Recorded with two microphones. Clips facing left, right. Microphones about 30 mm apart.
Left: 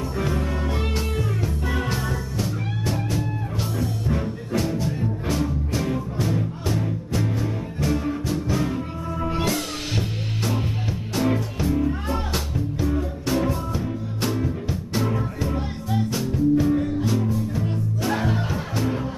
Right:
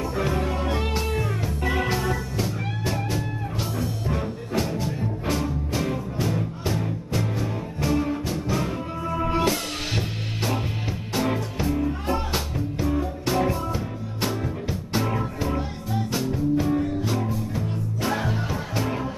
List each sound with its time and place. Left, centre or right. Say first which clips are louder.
0.1 s music: even; centre
1.6 s music: right 6 dB; centre
9.1 s music: right 2 dB; right
9.5 s music: even; centre
18.5 s music: left 2 dB; centre